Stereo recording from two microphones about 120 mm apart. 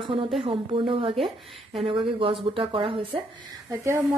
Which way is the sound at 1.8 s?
45° right (ahead or behind).